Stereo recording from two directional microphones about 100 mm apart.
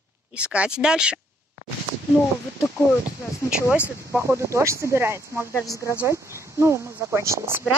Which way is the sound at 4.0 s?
30° right (ahead or behind).